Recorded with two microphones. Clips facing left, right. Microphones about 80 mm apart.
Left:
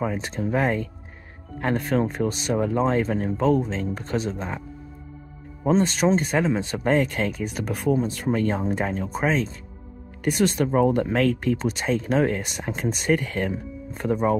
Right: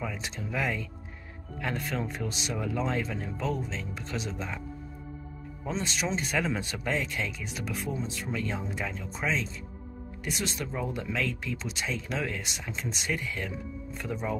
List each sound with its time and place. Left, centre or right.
0.0 s speech: left
6.4 s speech: left